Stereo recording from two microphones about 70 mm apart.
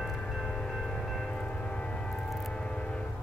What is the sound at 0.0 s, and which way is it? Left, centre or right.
Tubular bells, centre.